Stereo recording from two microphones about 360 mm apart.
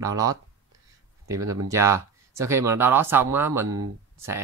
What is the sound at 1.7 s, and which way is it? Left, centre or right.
Speech, centre.